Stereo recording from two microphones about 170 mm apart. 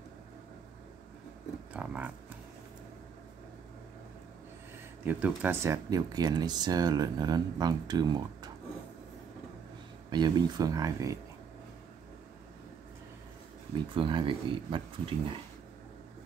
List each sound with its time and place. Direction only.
1.7 s livestock: 10° right (ahead or behind)
5.0 s speech: 10° right (ahead or behind)
10.0 s speech: 25° right (ahead or behind)
13.9 s speech: 30° right (ahead or behind)